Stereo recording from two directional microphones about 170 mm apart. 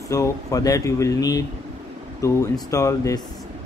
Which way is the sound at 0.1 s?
20° left (ahead or behind).